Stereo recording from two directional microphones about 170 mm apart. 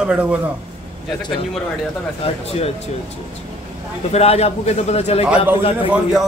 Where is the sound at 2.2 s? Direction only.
35° left (ahead or behind).